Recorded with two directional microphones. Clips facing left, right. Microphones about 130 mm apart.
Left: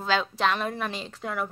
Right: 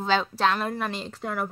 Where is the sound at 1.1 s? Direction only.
10° right (ahead or behind).